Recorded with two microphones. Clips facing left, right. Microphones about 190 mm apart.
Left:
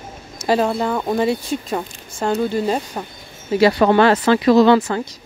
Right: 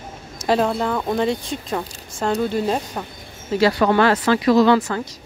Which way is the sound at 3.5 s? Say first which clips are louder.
Left 3 dB; 15° left (ahead or behind).